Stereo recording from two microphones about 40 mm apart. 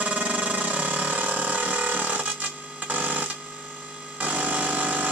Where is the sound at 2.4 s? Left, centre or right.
Right.